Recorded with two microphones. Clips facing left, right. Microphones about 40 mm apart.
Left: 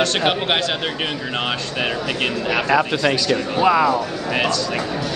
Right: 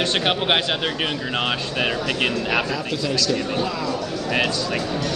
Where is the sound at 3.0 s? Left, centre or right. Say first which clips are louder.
Left 4 dB; left.